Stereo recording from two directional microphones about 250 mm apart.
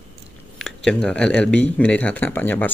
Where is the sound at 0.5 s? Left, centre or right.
Centre.